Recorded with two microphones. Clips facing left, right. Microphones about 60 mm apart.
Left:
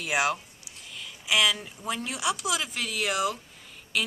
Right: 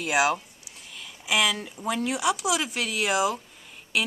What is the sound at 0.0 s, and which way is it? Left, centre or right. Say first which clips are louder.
Speech: right 3 dB; centre.